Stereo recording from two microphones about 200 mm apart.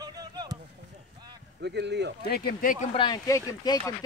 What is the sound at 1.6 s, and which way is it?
Speech, 60° right (ahead or behind).